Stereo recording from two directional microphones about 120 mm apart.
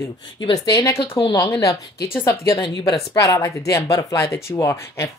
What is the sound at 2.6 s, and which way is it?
Speech, 50° left (ahead or behind).